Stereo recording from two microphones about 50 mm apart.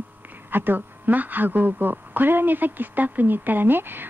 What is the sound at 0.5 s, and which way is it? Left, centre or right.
A woman's voice, right.